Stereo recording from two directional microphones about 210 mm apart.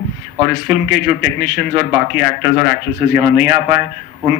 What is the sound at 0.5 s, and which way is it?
Speech, 50° right (ahead or behind).